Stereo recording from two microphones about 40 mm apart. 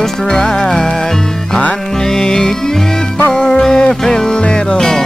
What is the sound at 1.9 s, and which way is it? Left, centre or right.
Music, centre.